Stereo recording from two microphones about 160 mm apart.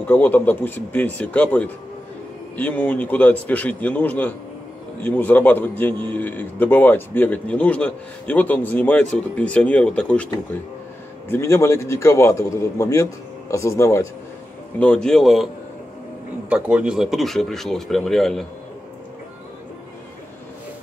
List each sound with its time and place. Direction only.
0.0 s a man's voice: 10° left (ahead or behind)
14.8 s speech: 5° left (ahead or behind)
16.4 s speech: 5° right (ahead or behind)